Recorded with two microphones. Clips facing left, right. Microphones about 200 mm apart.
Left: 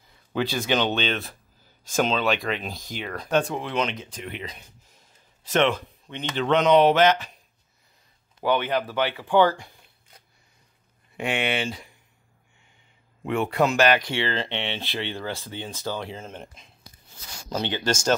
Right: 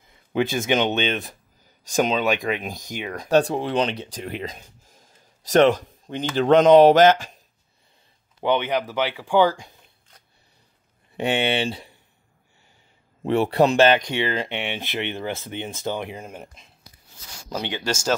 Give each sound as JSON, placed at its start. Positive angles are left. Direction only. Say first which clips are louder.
{"t": 0.3, "sound": "speech", "louder": "right 3 dB", "side_deg": -20}
{"t": 3.3, "sound": "speech", "louder": "right 5 dB", "side_deg": -35}
{"t": 8.4, "sound": "speech", "louder": "right 2 dB", "side_deg": -20}
{"t": 11.1, "sound": "speech", "louder": "right 4 dB", "side_deg": -30}
{"t": 13.2, "sound": "speech", "louder": "right 4 dB", "side_deg": -35}
{"t": 17.5, "sound": "speech", "louder": "left 1 dB", "side_deg": -10}